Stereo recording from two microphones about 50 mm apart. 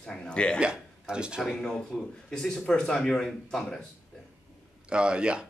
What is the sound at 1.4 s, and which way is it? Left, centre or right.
Speech, centre.